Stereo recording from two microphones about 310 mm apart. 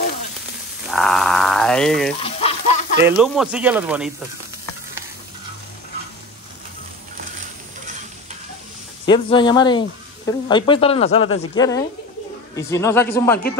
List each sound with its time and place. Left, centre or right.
0.8 s a sound: centre
2.2 s frying: centre
3.1 s speech: centre
9.0 s speech: centre